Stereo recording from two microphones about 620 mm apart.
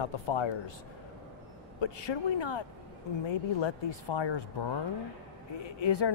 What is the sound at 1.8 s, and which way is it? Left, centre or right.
Speech, left.